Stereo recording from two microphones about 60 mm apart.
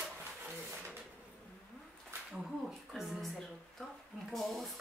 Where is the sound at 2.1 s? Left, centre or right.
Right.